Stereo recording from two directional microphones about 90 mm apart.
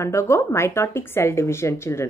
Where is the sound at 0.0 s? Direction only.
30° left (ahead or behind).